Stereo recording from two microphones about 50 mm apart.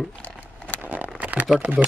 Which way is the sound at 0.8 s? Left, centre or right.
Right.